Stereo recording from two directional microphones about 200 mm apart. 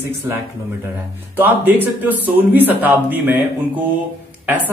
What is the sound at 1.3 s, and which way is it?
A man's voice, 10° right (ahead or behind).